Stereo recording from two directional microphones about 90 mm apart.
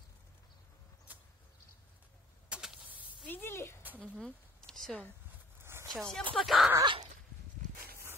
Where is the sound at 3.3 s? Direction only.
25° left (ahead or behind).